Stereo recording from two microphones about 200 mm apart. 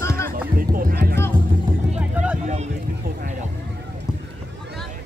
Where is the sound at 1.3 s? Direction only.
45° right (ahead or behind).